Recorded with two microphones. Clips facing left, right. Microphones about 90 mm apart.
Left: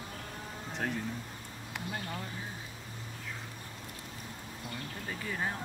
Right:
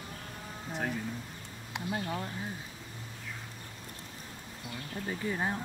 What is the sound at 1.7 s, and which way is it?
Speech, 20° right (ahead or behind).